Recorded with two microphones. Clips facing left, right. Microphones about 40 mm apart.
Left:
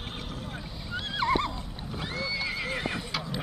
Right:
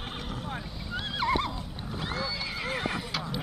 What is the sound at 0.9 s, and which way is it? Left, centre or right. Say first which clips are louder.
Neigh: left 1 dB; centre.